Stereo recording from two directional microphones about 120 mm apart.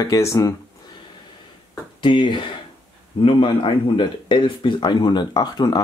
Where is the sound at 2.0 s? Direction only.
40° left (ahead or behind).